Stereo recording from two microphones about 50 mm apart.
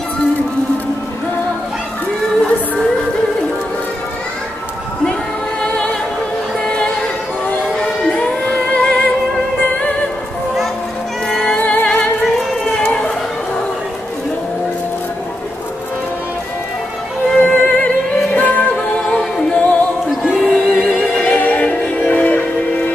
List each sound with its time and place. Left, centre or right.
6.7 s music: centre
8.1 s music: left
11.2 s music: centre
11.5 s music: left
12.2 s music: centre
17.4 s music: left
19.5 s music: left
20.3 s music: centre
21.0 s music: left